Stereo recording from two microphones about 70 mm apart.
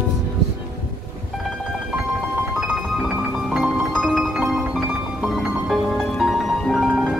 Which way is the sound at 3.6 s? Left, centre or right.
Centre.